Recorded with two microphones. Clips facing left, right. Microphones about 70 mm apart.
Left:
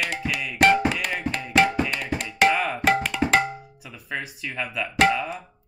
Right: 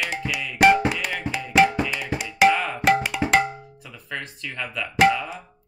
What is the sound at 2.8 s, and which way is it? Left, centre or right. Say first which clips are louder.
Cowbell: right 1 dB; centre.